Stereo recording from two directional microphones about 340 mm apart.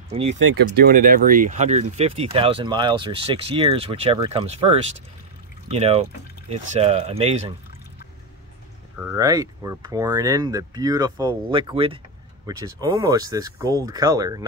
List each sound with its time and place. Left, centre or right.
0.4 s speech: right
9.0 s speech: centre